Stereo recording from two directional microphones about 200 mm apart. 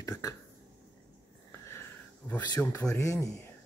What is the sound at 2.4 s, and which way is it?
Speech, 15° left (ahead or behind).